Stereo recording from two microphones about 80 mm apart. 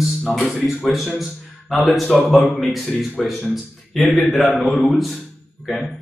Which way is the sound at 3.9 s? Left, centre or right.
Centre.